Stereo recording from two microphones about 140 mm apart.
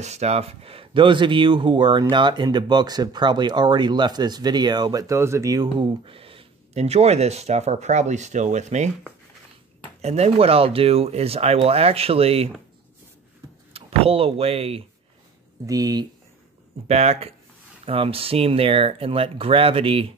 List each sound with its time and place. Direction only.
0.0 s speech: 50° right (ahead or behind); by 5.9 s 25° right (ahead or behind)
6.0 s speech: 40° right (ahead or behind)
10.0 s speech: 50° right (ahead or behind)
13.7 s speech: 45° right (ahead or behind)
15.6 s speech: 25° right (ahead or behind)
16.8 s speech: 50° right (ahead or behind)